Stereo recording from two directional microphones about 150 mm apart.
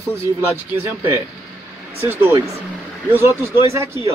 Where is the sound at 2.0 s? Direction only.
15° right (ahead or behind).